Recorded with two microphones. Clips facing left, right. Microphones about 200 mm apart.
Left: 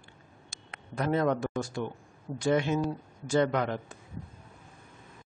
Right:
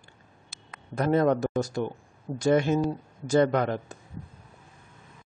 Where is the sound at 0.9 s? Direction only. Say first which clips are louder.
Right 4 dB; 40° right (ahead or behind).